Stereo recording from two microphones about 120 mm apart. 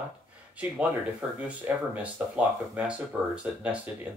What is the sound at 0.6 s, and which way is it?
Speech, 10° right (ahead or behind).